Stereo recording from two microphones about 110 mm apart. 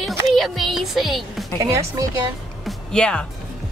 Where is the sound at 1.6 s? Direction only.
30° right (ahead or behind).